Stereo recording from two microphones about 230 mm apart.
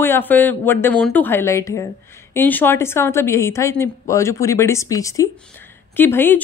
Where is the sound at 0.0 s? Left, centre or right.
Centre.